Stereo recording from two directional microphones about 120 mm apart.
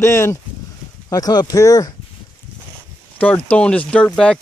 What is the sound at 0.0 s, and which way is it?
Speech, 25° left (ahead or behind).